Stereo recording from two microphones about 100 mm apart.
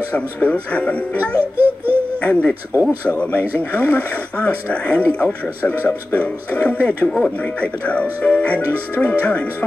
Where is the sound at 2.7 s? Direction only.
20° right (ahead or behind).